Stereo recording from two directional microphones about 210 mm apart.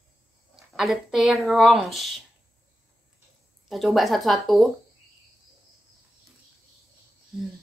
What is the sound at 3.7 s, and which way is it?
Speech, centre (ahead or behind).